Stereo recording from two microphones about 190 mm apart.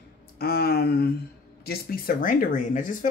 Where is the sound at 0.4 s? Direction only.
55° left (ahead or behind).